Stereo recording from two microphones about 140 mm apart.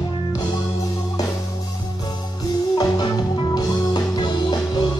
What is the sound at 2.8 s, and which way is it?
Music, 25° left (ahead or behind).